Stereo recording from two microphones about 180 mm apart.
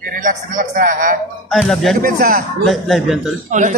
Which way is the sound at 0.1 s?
45° right (ahead or behind).